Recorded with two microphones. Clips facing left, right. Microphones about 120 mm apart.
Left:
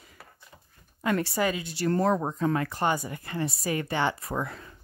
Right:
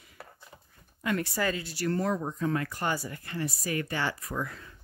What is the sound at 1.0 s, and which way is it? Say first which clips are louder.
Speech: left 3 dB; 30° left (ahead or behind).